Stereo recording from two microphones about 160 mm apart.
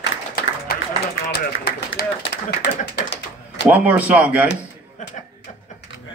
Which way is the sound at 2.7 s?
90° left.